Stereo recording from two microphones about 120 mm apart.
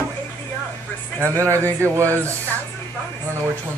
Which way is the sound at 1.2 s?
20° right (ahead or behind).